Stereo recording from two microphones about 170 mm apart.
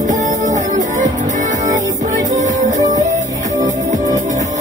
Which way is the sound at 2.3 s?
45° right (ahead or behind).